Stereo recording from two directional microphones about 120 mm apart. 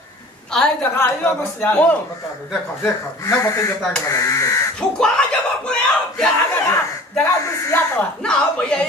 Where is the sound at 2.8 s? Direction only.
25° left (ahead or behind).